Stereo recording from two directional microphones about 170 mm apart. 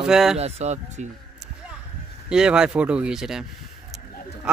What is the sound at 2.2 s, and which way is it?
Speech, 5° right (ahead or behind).